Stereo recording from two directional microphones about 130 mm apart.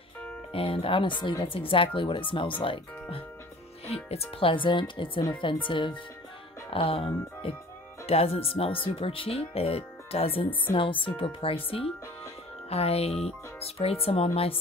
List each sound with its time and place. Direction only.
0.5 s speech: 45° left (ahead or behind)